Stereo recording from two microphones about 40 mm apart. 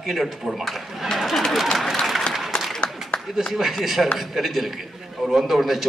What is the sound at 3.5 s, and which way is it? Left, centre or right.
A man's voice, centre.